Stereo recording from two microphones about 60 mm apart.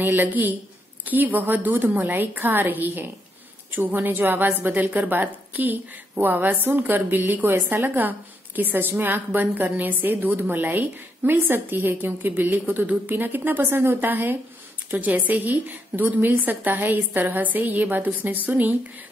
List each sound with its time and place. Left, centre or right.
0.0 s a woman's voice: right